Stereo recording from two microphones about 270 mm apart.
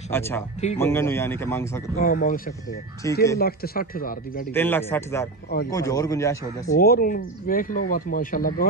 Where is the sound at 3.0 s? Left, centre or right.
Centre.